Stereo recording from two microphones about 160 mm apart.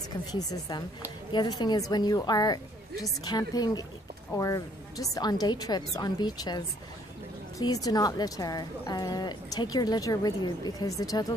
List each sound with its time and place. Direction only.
0.3 s a woman's voice: 25° left (ahead or behind)